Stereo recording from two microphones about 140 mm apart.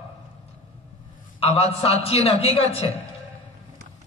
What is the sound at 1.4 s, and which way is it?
A man's voice, 50° left (ahead or behind).